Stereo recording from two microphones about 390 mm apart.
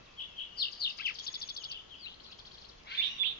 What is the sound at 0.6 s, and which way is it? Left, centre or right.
Chirp, left.